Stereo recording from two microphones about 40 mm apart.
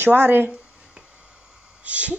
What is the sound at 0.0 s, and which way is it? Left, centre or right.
Speech, right.